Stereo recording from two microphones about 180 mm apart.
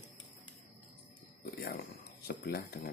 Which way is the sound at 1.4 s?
55° left (ahead or behind).